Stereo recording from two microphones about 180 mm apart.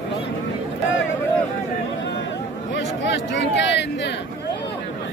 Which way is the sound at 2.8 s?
80° left.